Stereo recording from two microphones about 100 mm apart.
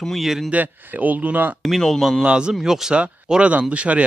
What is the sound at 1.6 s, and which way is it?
Speech, centre (ahead or behind).